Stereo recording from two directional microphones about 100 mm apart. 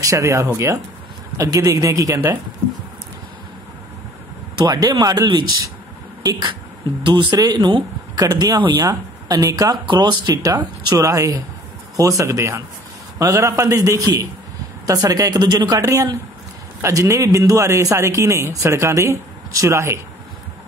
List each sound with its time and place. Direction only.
0.0 s speech: 30° right (ahead or behind)
4.6 s speech: 40° right (ahead or behind)
7.1 s speech: 45° right (ahead or behind)
9.8 s speech: 45° right (ahead or behind); by 20.0 s 30° right (ahead or behind)